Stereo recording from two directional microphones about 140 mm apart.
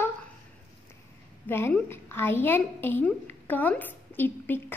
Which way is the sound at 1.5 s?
15° left (ahead or behind).